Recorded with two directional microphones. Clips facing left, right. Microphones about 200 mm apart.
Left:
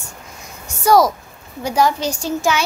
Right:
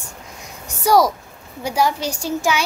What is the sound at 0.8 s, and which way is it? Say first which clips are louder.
A woman's voice: left 2 dB; 15° right (ahead or behind).